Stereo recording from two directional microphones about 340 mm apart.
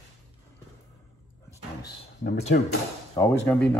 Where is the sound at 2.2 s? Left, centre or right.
Left.